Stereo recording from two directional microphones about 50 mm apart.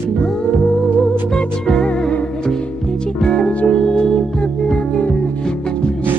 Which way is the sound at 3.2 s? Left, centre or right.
Centre.